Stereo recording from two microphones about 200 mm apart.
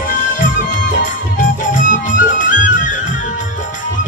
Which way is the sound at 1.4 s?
40° left (ahead or behind).